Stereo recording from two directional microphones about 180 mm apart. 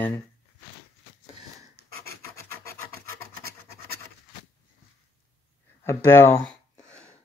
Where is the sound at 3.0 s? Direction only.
60° right (ahead or behind).